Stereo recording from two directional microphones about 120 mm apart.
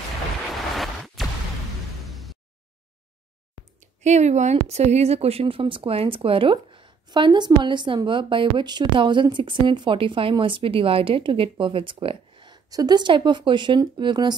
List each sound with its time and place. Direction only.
0.7 s music: centre (ahead or behind)
3.8 s speech: 75° right (ahead or behind); by 14.3 s 40° right (ahead or behind)